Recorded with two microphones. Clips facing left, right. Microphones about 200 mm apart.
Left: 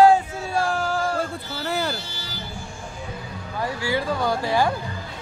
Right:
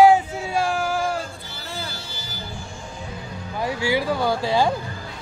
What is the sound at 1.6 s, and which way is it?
Music, 70° left (ahead or behind).